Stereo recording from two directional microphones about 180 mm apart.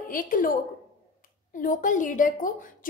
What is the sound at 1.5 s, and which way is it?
A woman's voice, 45° left (ahead or behind).